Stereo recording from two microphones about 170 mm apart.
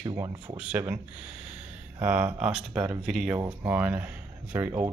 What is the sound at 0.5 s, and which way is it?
Speech, 10° right (ahead or behind).